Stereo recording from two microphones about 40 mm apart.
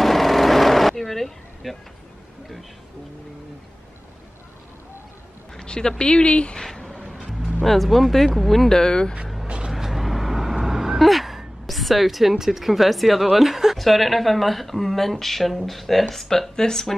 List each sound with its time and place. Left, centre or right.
0.0 s a sound: centre
5.6 s speech: centre
6.6 s a sound: centre
7.1 s music: centre
7.6 s a woman's voice: centre
9.7 s vehicle: centre
11.6 s a woman's voice: centre